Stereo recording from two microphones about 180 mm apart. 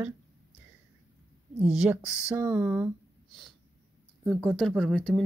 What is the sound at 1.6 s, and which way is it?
Speech, centre (ahead or behind).